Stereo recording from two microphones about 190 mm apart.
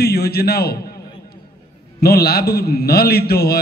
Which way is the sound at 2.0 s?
55° left (ahead or behind).